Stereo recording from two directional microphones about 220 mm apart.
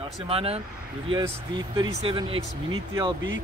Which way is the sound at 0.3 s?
25° right (ahead or behind).